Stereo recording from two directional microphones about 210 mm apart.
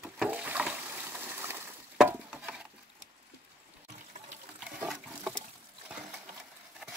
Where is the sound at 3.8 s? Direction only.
35° right (ahead or behind).